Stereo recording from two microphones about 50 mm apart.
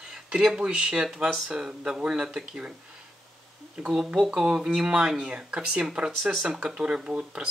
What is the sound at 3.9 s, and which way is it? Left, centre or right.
Speech, centre.